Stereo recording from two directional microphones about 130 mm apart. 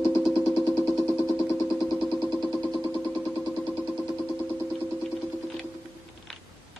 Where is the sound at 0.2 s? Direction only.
Centre (ahead or behind).